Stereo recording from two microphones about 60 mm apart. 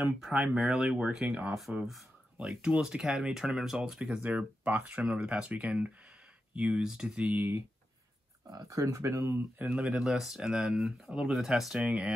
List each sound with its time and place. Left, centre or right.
0.2 s speech: centre
4.2 s speech: right
7.2 s speech: right
8.5 s speech: right
9.6 s speech: centre
11.8 s speech: centre